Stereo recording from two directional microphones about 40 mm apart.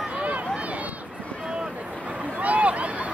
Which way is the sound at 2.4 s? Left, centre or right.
Right.